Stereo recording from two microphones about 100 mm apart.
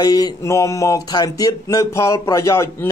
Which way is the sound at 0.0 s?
40° left (ahead or behind).